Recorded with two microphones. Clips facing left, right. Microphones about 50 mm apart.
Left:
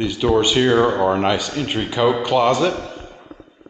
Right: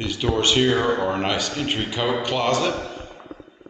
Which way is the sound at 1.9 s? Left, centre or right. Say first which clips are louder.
Left 10 dB; centre.